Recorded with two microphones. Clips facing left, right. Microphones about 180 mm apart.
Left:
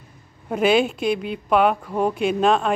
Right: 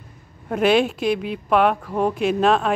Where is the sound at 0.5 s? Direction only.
Centre (ahead or behind).